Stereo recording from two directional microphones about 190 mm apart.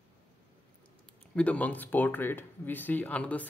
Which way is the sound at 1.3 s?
5° left (ahead or behind).